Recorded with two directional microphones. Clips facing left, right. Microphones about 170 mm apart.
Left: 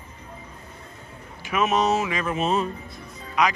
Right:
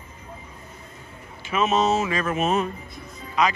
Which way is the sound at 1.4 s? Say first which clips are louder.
Right 1 dB; 10° left (ahead or behind).